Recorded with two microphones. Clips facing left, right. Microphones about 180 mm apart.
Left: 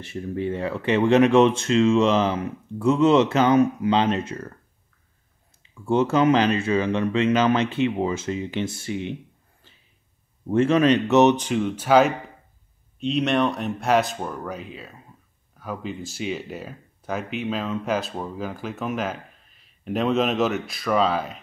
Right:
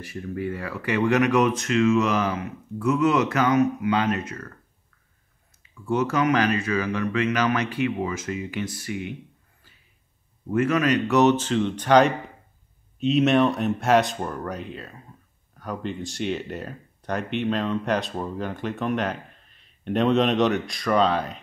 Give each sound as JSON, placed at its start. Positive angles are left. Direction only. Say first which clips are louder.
{"t": 0.0, "sound": "speech", "louder": "left 2 dB", "side_deg": 25}
{"t": 5.6, "sound": "speech", "louder": "left 3 dB", "side_deg": 25}
{"t": 10.5, "sound": "speech", "louder": "left 3 dB", "side_deg": 30}